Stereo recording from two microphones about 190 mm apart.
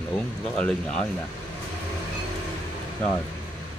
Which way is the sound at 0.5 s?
5° left (ahead or behind).